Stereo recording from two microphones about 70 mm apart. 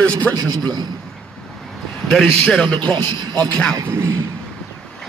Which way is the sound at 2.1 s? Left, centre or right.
Centre.